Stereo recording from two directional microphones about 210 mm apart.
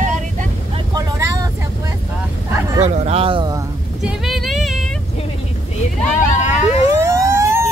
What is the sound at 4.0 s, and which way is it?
Female singing, centre (ahead or behind).